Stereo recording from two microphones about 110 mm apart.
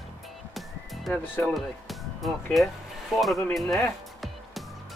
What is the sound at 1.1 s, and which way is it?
Speech, 15° left (ahead or behind).